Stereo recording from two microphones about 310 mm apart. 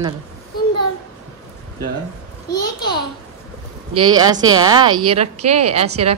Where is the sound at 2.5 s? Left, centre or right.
Centre.